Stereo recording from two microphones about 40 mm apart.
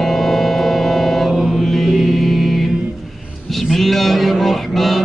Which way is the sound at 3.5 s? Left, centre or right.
Centre.